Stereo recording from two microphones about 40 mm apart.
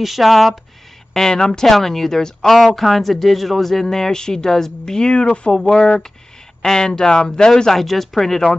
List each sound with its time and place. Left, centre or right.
0.0 s speech: centre
1.1 s speech: centre
1.7 s speech: centre; by 5.5 s left
5.5 s speech: centre
7.7 s speech: centre